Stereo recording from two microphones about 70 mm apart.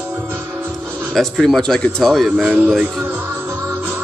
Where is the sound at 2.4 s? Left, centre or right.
Right.